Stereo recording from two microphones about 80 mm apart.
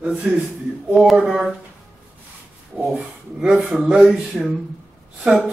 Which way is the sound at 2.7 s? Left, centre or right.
Centre.